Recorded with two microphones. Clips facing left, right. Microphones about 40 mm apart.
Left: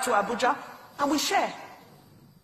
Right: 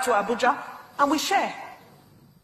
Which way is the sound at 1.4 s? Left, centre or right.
Right.